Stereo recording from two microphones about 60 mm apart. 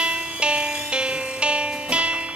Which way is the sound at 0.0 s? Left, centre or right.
Centre.